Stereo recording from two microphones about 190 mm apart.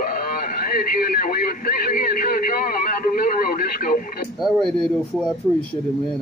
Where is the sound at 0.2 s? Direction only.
50° left (ahead or behind).